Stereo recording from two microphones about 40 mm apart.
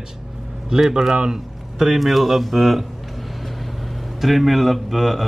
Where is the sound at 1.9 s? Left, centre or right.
Centre.